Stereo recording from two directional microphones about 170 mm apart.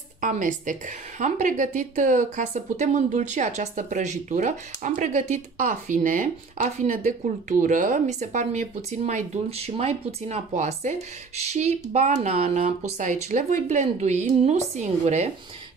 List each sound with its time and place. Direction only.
0.2 s a woman's voice: 50° right (ahead or behind)